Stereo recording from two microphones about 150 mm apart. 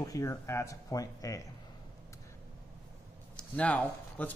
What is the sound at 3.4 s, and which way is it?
Speech, 10° left (ahead or behind).